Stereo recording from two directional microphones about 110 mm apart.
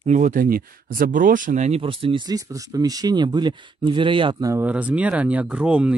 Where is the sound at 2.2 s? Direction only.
30° right (ahead or behind); by 4.4 s 50° right (ahead or behind).